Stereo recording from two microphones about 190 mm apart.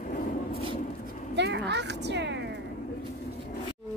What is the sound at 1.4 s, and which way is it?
A woman's voice, 65° right (ahead or behind).